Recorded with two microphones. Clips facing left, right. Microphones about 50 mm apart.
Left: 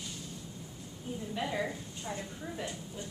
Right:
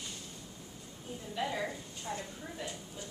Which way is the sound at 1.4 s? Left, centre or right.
Centre.